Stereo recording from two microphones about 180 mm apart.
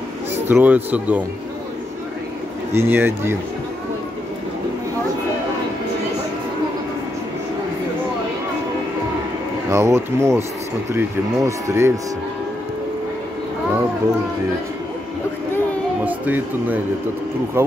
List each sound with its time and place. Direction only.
0.5 s speech: 10° right (ahead or behind)
2.7 s speech: 15° right (ahead or behind)
9.7 s speech: 15° right (ahead or behind)
16.1 s speech: 10° right (ahead or behind)